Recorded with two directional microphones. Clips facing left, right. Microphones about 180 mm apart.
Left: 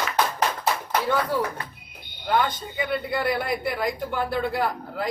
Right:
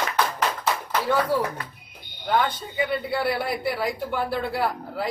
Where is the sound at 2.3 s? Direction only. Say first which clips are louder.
Even; 5° right (ahead or behind).